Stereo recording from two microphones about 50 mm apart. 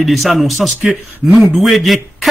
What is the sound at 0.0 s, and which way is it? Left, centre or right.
A man's voice, centre.